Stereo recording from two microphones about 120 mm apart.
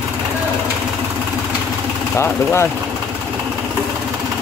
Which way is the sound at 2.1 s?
20° left (ahead or behind).